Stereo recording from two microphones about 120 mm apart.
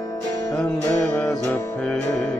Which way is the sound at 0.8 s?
10° left (ahead or behind).